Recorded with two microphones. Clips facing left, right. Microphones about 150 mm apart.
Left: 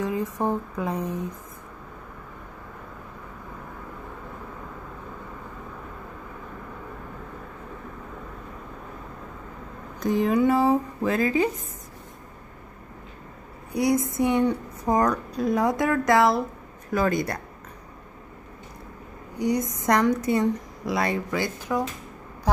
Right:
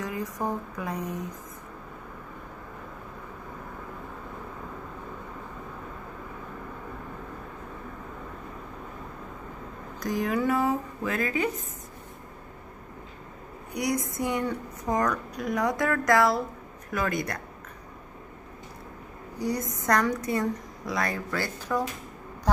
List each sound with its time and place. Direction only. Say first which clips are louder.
0.0 s a woman's voice: left 5 dB; 30° left (ahead or behind)
9.9 s a woman's voice: left 6 dB; 25° left (ahead or behind)
13.7 s a woman's voice: left 6 dB; 25° left (ahead or behind)
16.9 s speech: left 5 dB; 35° left (ahead or behind)
19.3 s a woman's voice: left 5 dB; 20° left (ahead or behind)
21.3 s speech: left 3 dB; 10° left (ahead or behind)